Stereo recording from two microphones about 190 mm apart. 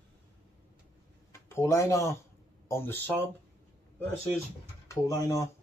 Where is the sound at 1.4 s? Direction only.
15° left (ahead or behind).